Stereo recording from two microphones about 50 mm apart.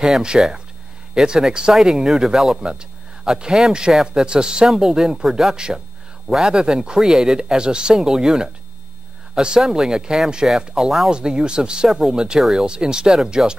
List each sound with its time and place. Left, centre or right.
0.3 s a man's voice: centre
12.4 s speech: centre
12.6 s speech: centre